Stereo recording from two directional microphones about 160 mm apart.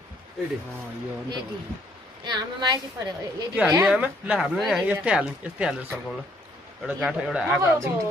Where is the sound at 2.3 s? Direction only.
25° right (ahead or behind).